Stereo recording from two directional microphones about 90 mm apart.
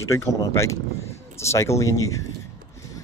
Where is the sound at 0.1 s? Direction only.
35° left (ahead or behind).